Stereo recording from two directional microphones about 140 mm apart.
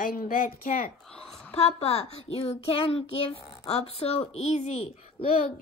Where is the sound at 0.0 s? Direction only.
90° left.